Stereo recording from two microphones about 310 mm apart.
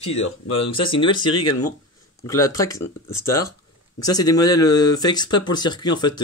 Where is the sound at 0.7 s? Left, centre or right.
Centre.